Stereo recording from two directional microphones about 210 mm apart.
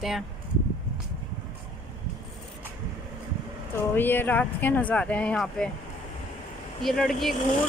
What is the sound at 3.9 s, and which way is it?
Speech, 10° left (ahead or behind).